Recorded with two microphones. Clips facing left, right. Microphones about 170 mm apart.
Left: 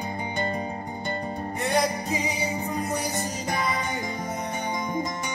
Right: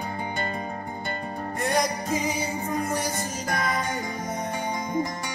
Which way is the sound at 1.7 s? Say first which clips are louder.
Even; centre (ahead or behind).